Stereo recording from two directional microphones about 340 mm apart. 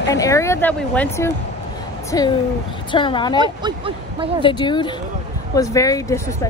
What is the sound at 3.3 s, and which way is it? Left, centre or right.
Speech, centre.